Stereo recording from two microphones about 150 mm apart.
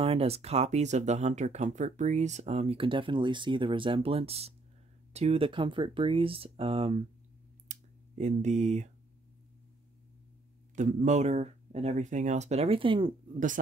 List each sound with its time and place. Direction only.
0.0 s speech: 40° right (ahead or behind)
7.6 s a sound: 50° right (ahead or behind)
10.8 s speech: 55° right (ahead or behind); by 13.1 s 35° right (ahead or behind)